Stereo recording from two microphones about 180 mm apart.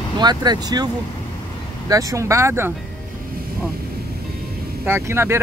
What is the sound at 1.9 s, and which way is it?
Speech, 20° right (ahead or behind).